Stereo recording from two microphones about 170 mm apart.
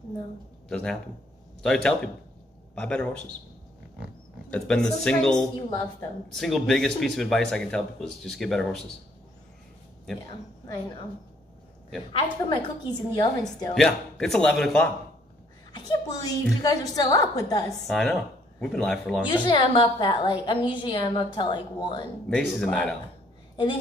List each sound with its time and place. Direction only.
0.7 s a man's voice: 5° left (ahead or behind)
4.5 s speech: 5° left (ahead or behind)
12.1 s a woman's voice: 30° left (ahead or behind)
13.7 s speech: 5° left (ahead or behind)
15.7 s a child's voice: 20° left (ahead or behind)
17.8 s speech: centre (ahead or behind)
19.4 s a woman's voice: 30° left (ahead or behind)
22.3 s speech: 5° left (ahead or behind)